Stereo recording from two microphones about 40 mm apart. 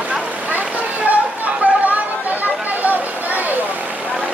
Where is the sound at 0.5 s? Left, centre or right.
Right.